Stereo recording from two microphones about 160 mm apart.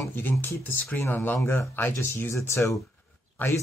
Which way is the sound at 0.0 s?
15° left (ahead or behind).